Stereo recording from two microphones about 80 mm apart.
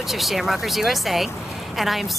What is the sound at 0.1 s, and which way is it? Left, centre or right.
Speech, centre.